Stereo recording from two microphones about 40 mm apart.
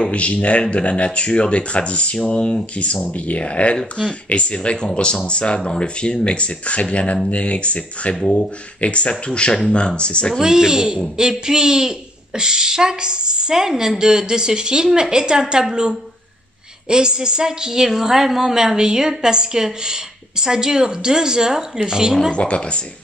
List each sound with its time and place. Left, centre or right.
0.0 s speech: left
10.4 s a woman's voice: centre
22.3 s speech: left